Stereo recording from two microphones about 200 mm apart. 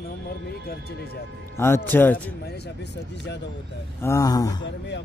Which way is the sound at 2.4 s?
55° left (ahead or behind).